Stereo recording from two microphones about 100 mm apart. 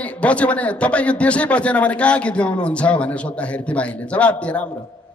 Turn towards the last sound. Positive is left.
turn(degrees=15)  # may be behind; listen again after turning